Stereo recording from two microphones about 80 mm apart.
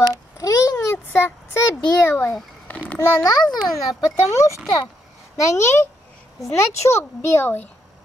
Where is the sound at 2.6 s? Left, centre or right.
Centre.